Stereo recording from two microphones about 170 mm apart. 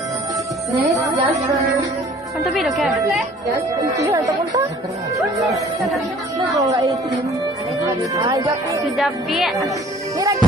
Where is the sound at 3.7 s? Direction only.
20° right (ahead or behind).